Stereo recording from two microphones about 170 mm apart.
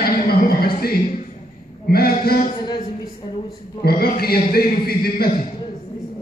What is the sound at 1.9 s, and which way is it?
Speech, 65° left (ahead or behind).